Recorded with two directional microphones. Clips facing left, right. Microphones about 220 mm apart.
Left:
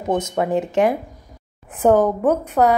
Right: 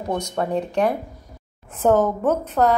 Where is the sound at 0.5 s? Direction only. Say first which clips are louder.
Left 3 dB; 90° left.